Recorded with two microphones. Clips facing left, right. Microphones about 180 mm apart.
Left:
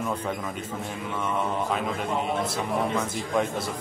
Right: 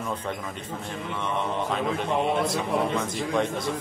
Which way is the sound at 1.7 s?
5° left (ahead or behind).